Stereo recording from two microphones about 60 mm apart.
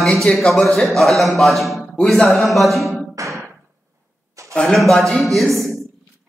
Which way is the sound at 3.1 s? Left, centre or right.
Right.